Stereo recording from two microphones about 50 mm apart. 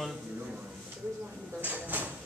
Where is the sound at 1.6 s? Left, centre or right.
Right.